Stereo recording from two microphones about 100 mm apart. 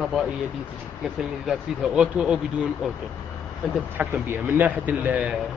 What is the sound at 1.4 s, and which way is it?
Speech, 5° right (ahead or behind).